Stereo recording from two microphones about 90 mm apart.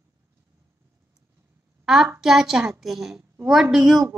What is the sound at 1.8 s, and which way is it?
A woman's voice, 5° right (ahead or behind).